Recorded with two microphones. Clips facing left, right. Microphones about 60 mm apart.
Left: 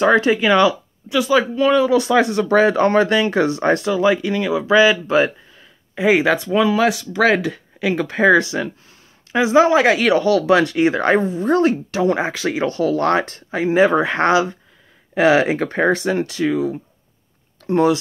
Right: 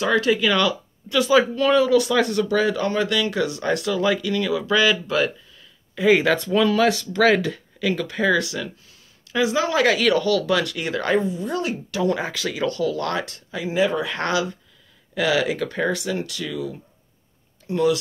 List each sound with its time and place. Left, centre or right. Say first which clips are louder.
0.0 s speech: left 5 dB; left
1.1 s speech: left 1 dB; centre
1.9 s speech: left 3 dB; left
2.4 s speech: left 7 dB; left
3.9 s speech: left 4 dB; left
7.8 s speech: left 6 dB; left